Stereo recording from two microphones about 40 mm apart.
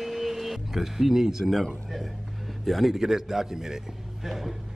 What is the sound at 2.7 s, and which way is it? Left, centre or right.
A man's voice, centre.